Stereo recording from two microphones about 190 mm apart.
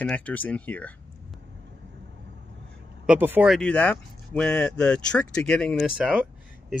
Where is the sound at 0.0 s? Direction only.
5° left (ahead or behind).